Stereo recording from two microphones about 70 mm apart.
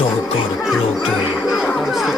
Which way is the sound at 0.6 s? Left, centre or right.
Centre.